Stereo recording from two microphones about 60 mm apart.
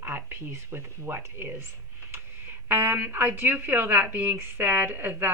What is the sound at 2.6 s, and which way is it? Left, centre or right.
A woman's voice, right.